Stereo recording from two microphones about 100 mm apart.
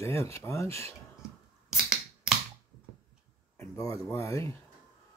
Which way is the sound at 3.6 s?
30° left (ahead or behind).